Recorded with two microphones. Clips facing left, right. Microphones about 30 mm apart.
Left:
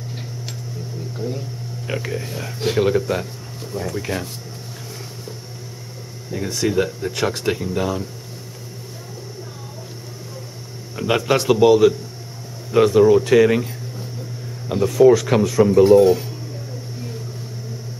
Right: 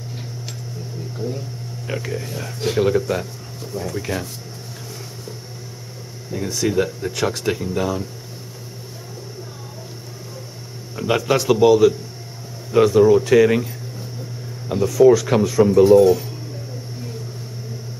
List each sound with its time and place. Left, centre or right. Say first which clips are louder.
1.1 s a sound: even; centre
1.9 s speech: left 1 dB; centre
6.3 s speech: even; centre
11.0 s speech: even; centre
14.7 s speech: even; centre
16.0 s speech: even; centre